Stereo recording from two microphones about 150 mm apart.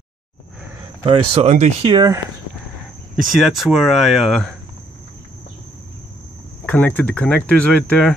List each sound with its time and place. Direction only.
1.0 s speech: 40° right (ahead or behind)
1.9 s speech: 25° right (ahead or behind)
3.3 s speech: centre (ahead or behind)
6.6 s speech: 10° left (ahead or behind)